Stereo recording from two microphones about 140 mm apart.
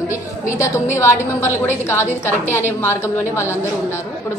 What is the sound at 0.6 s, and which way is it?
A woman's voice, 20° left (ahead or behind).